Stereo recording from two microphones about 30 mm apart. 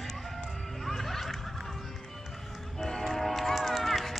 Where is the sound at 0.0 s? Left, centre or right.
Centre.